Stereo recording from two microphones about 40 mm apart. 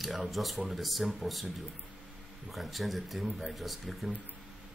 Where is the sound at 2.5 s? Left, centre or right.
Centre.